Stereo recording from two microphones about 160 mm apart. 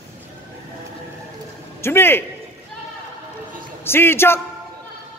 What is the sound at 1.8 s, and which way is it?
Speech, 15° left (ahead or behind).